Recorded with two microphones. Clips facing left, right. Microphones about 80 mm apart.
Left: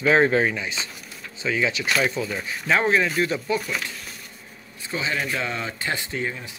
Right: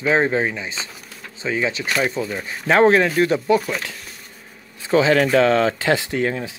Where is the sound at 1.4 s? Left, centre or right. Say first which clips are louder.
Right 2 dB; right.